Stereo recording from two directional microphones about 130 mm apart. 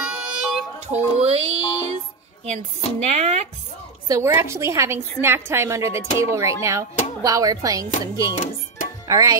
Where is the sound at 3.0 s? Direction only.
55° right (ahead or behind).